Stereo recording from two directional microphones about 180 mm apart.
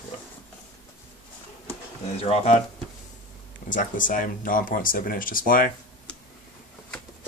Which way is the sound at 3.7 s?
50° left (ahead or behind).